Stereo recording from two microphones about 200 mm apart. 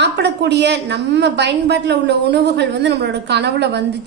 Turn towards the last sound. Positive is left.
turn(degrees=-60)  # may be behind; listen again after turning